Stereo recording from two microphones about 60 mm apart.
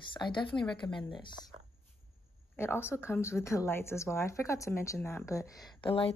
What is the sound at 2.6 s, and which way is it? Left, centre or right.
Speech, left.